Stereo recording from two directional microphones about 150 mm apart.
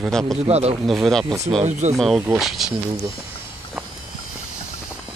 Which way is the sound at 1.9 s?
Centre (ahead or behind).